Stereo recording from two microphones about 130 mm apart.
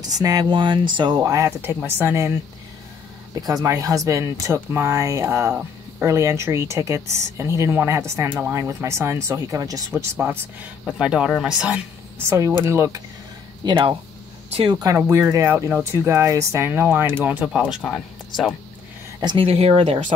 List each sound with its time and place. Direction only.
0.1 s speech: 30° right (ahead or behind)
3.3 s speech: 30° right (ahead or behind); by 6.0 s 15° right (ahead or behind)
6.0 s speech: 25° right (ahead or behind)
10.9 s speech: 5° right (ahead or behind)
12.3 s speech: 20° right (ahead or behind)
13.7 s speech: 40° right (ahead or behind)
15.0 s speech: 20° right (ahead or behind); by 18.5 s 5° left (ahead or behind)
19.2 s speech: 45° right (ahead or behind); by 20.2 s 65° right (ahead or behind)